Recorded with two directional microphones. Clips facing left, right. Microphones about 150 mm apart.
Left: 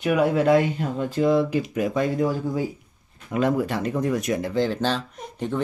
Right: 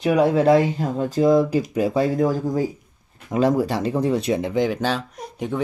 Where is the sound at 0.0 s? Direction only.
35° right (ahead or behind).